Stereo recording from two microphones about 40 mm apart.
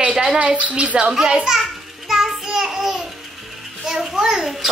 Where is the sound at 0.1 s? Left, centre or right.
Centre.